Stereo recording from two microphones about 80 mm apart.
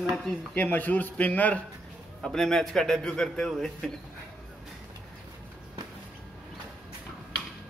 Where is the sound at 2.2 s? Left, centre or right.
Centre.